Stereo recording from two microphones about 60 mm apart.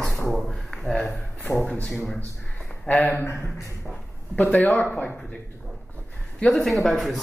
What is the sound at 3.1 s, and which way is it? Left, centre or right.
Speech, left.